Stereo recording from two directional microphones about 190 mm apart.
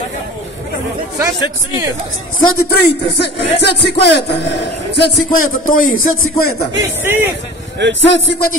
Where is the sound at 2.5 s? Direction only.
55° left (ahead or behind).